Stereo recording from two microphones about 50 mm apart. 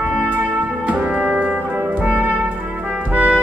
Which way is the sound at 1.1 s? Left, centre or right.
Right.